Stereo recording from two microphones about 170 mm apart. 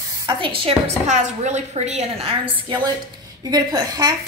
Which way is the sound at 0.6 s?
35° right (ahead or behind).